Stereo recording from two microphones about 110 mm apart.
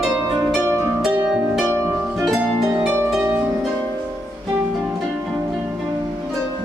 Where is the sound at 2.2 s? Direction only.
5° right (ahead or behind).